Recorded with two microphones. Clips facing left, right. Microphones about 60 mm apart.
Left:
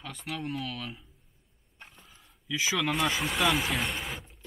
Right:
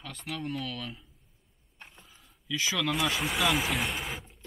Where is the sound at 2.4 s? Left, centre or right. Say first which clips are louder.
Left 1 dB; centre.